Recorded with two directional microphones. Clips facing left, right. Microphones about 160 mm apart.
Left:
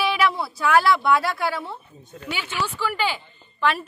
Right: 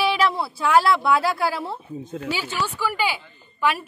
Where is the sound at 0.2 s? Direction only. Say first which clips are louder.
Even; 30° right (ahead or behind).